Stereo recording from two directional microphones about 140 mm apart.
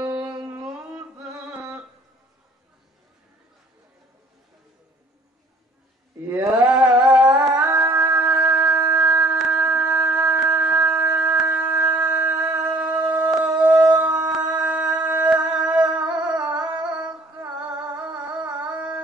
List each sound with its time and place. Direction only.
0.0 s music: 10° right (ahead or behind)
6.2 s mantra: 20° right (ahead or behind)
6.7 s music: 10° right (ahead or behind)
8.2 s a sound: 10° right (ahead or behind)
8.9 s shofar: 10° right (ahead or behind)
12.5 s howl: 5° right (ahead or behind)
14.5 s a sound: 10° right (ahead or behind)
15.0 s music: 10° right (ahead or behind)
17.9 s music: 10° right (ahead or behind)